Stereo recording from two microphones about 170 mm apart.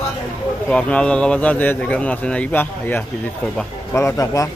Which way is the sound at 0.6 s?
5° left (ahead or behind).